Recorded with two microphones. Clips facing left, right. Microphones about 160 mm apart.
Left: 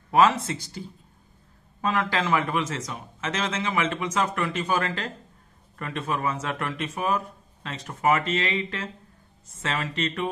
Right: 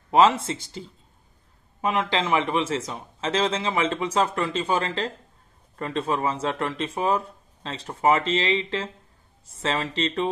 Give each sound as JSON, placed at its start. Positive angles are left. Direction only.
{"t": 0.1, "sound": "a man's voice", "side_deg": -25}